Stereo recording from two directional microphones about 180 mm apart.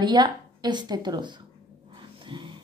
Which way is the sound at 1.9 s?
25° right (ahead or behind).